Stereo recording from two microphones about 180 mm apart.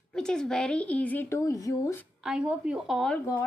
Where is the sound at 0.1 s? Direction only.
5° left (ahead or behind).